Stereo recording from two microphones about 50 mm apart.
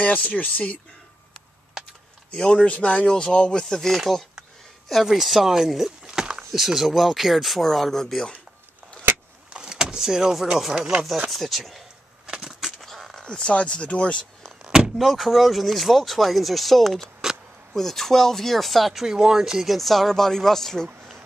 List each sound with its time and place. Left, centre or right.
0.0 s speech: left
2.3 s speech: centre
9.5 s vehicle: centre
11.2 s speech: centre
12.3 s a sound: centre
12.8 s a sound: centre
13.2 s speech: centre
14.4 s door: centre
15.0 s speech: centre